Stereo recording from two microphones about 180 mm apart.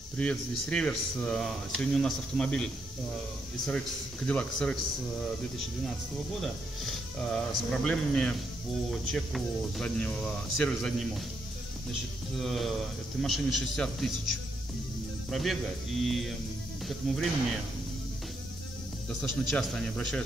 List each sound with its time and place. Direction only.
0.2 s speech: 5° left (ahead or behind)
4.3 s speech: 5° left (ahead or behind)
6.4 s speech: centre (ahead or behind)
12.4 s speech: centre (ahead or behind)
15.2 s speech: centre (ahead or behind)
19.2 s speech: centre (ahead or behind)